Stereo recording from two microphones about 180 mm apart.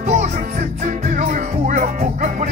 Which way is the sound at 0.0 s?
45° right (ahead or behind).